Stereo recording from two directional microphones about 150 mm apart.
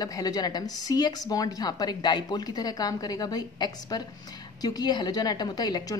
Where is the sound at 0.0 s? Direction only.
25° left (ahead or behind).